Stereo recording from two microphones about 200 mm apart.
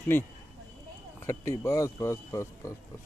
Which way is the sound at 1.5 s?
15° left (ahead or behind).